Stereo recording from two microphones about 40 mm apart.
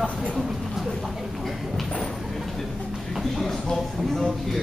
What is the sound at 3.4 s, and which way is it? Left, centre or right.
Speech, centre.